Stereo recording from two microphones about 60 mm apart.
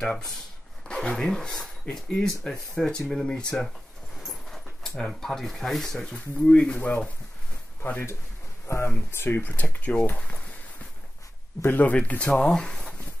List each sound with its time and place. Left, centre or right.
0.8 s speech: centre
6.1 s speech: centre
8.6 s speech: left
9.1 s speech: left
9.5 s speech: left
11.6 s speech: left
12.4 s speech: centre